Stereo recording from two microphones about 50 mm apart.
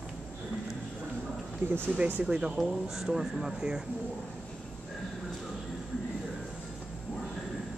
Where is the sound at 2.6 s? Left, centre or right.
Centre.